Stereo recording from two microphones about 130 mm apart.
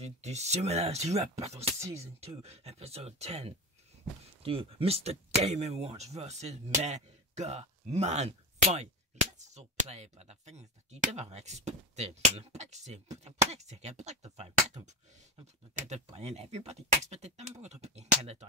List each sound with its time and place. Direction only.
0.0 s speech: 60° right (ahead or behind)
15.9 s speech: 55° right (ahead or behind)